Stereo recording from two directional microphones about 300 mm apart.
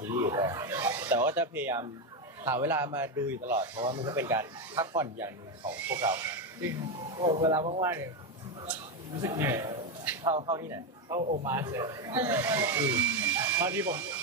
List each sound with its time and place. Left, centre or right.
0.0 s a sound: centre
2.4 s a man's voice: centre
11.1 s a man's voice: right
11.4 s a man's voice: centre